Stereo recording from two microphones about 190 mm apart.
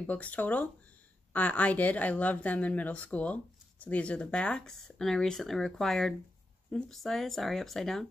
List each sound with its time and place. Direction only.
0.0 s a woman's voice: 10° left (ahead or behind)